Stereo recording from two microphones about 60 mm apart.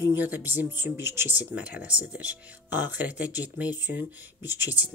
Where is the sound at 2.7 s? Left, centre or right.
Right.